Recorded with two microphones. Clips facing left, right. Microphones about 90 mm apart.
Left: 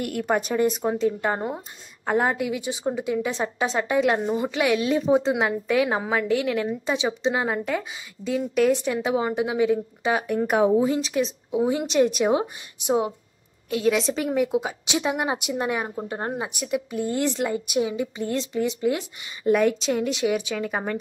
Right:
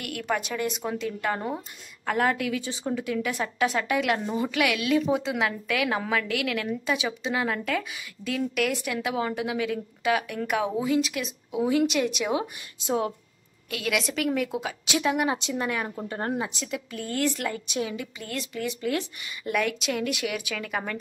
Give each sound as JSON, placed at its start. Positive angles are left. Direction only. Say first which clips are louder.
{"t": 0.3, "sound": "a woman's voice", "louder": "left 6 dB", "side_deg": 40}
{"t": 0.8, "sound": "a woman's voice", "louder": "left 5 dB", "side_deg": 25}
{"t": 12.8, "sound": "speech", "louder": "left 4 dB", "side_deg": 15}
{"t": 19.4, "sound": "speech", "louder": "left 7 dB", "side_deg": 30}